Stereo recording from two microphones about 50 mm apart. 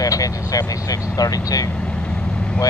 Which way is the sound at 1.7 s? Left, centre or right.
Left.